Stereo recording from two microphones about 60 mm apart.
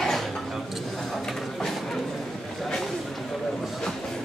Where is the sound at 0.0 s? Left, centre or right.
Centre.